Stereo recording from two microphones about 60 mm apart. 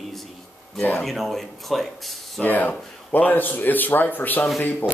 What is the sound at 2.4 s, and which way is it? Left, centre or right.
A man's voice, left.